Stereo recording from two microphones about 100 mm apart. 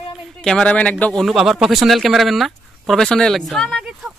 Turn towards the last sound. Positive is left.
turn(degrees=0)  # may be behind; listen again after turning